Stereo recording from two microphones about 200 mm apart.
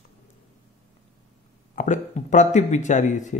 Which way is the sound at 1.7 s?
40° left (ahead or behind).